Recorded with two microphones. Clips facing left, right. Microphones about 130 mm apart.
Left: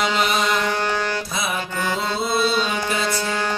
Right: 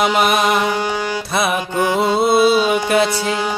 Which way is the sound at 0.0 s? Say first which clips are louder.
Right 6 dB; 55° right (ahead or behind).